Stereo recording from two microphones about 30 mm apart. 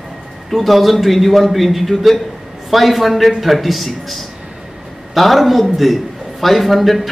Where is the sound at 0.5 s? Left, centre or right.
Centre.